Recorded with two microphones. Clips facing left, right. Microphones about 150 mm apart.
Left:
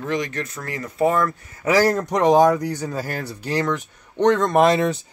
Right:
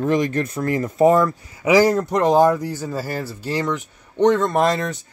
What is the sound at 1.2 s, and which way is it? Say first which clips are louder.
A man's voice: right 3 dB; 15° right (ahead or behind).